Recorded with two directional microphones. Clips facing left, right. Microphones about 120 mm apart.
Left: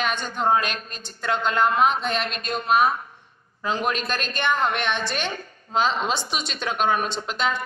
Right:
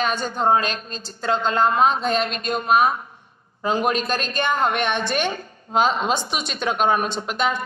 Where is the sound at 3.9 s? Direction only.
40° right (ahead or behind).